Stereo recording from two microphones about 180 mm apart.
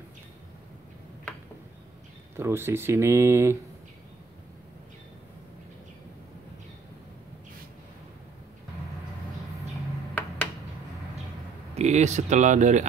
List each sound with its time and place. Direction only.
2.3 s speech: 15° right (ahead or behind)
11.7 s speech: 40° right (ahead or behind)